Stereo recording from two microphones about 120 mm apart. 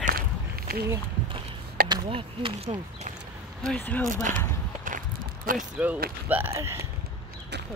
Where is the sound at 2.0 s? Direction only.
50° right (ahead or behind).